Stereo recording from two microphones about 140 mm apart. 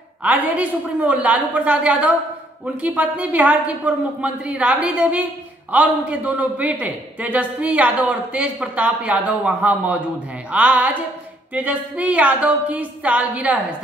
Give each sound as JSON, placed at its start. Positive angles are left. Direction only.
{"t": 0.2, "sound": "a man's voice", "side_deg": -10}